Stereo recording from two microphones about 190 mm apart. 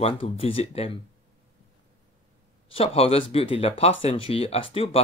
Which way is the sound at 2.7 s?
30° left (ahead or behind).